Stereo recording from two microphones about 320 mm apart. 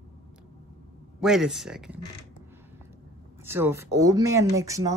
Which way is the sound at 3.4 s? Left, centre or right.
Centre.